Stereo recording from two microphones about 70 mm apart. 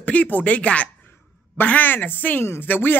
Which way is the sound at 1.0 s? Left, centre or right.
Left.